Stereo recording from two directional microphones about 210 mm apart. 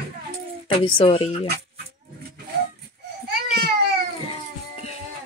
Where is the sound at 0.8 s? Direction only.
25° left (ahead or behind).